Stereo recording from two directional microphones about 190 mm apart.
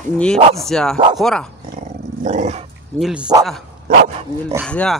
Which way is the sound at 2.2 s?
40° right (ahead or behind).